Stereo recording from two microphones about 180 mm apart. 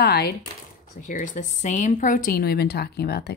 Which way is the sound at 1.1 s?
45° left (ahead or behind).